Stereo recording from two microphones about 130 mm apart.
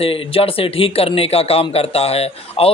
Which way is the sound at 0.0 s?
45° left (ahead or behind).